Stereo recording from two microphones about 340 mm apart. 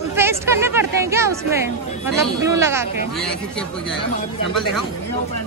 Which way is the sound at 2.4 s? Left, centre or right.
Centre.